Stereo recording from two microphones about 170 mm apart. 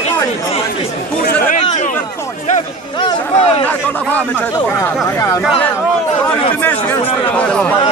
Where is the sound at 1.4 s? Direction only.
45° left (ahead or behind).